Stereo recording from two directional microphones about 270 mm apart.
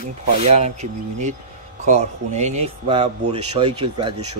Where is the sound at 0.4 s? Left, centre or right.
Right.